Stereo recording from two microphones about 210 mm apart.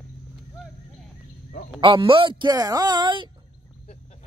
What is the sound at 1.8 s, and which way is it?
Speech, 25° right (ahead or behind).